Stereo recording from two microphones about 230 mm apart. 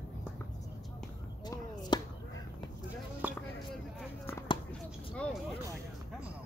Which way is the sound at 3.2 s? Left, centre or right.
Centre.